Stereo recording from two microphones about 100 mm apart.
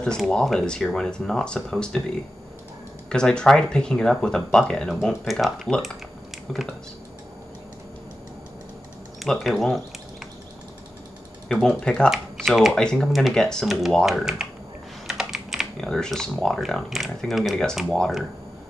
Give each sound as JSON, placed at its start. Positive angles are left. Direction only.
{"t": 0.0, "sound": "speech", "side_deg": 5}
{"t": 3.1, "sound": "speech", "side_deg": 10}
{"t": 9.2, "sound": "speech", "side_deg": 0}
{"t": 11.6, "sound": "speech", "side_deg": 10}
{"t": 12.1, "sound": "speech", "side_deg": 0}
{"t": 15.0, "sound": "typing", "side_deg": -5}
{"t": 15.9, "sound": "speech", "side_deg": 5}